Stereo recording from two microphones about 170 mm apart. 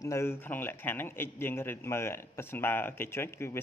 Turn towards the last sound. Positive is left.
turn(degrees=15)  # may be behind; listen again after turning